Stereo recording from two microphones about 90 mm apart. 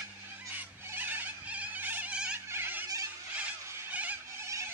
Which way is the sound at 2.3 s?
25° right (ahead or behind).